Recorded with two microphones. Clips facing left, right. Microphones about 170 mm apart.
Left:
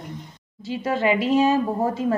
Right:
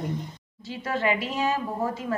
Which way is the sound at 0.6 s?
20° left (ahead or behind).